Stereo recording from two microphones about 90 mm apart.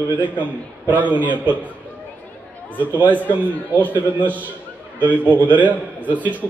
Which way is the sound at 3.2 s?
20° left (ahead or behind).